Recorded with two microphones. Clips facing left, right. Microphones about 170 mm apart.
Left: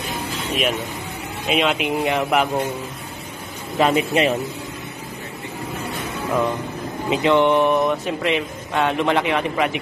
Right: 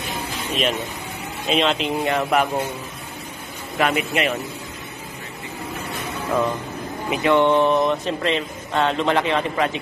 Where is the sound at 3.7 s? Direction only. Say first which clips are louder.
Left 3 dB; 30° left (ahead or behind).